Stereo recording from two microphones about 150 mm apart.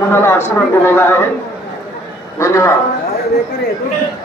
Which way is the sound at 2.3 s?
20° left (ahead or behind).